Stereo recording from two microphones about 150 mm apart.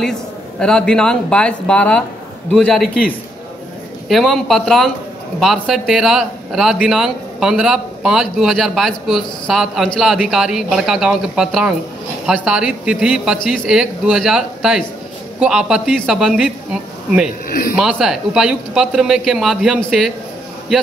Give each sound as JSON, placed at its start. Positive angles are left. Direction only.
{"t": 0.0, "sound": "a man's voice", "side_deg": 5}
{"t": 4.1, "sound": "a man's voice", "side_deg": 0}
{"t": 17.5, "sound": "speech", "side_deg": 80}
{"t": 17.7, "sound": "a man's voice", "side_deg": -5}